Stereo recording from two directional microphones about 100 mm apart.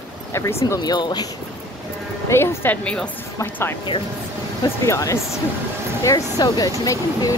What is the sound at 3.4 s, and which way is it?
Speech, 25° left (ahead or behind).